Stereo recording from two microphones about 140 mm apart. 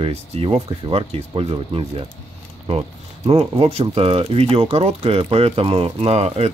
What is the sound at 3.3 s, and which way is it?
Speech, 45° right (ahead or behind).